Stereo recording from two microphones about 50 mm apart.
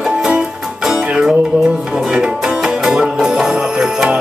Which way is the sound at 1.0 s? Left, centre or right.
Centre.